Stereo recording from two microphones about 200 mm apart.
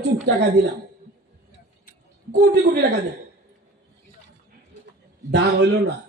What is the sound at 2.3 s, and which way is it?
Speech, 55° right (ahead or behind).